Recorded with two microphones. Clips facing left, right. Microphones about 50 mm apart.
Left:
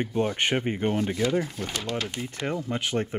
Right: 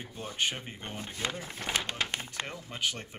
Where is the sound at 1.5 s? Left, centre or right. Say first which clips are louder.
Left 3 dB; right.